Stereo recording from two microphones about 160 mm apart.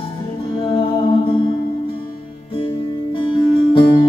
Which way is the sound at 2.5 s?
35° left (ahead or behind).